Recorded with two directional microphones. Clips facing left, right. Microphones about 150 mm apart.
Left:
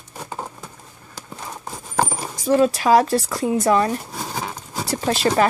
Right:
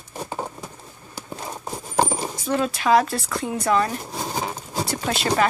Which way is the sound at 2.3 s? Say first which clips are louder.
Left 12 dB; 35° left (ahead or behind).